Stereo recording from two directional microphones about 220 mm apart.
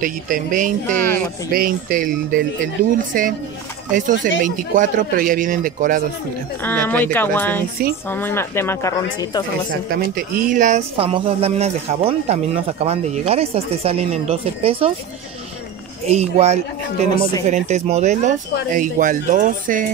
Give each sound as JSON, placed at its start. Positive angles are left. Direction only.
{"t": 0.0, "sound": "speech", "side_deg": -35}
{"t": 6.6, "sound": "speech", "side_deg": 10}
{"t": 10.1, "sound": "speech", "side_deg": -40}
{"t": 16.1, "sound": "speech", "side_deg": -30}